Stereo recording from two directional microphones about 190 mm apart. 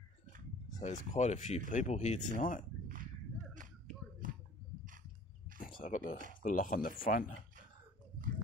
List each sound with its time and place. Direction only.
0.7 s speech: 40° left (ahead or behind)
4.2 s a sound: 45° right (ahead or behind)
5.8 s speech: 45° left (ahead or behind)